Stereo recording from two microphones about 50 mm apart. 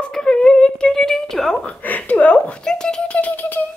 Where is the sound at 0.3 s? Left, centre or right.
Centre.